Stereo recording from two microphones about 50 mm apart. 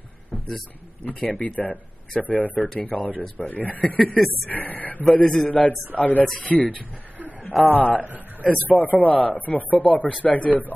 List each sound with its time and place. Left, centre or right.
1.0 s speech: left
5.9 s speech: left
6.7 s a sound: right
7.7 s speech: left
8.0 s speech: right
8.7 s speech: left